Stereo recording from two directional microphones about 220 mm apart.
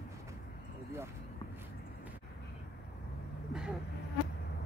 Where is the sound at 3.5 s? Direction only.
5° right (ahead or behind).